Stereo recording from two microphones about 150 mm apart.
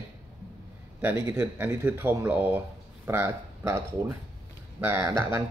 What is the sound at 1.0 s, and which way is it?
Speech, 15° right (ahead or behind).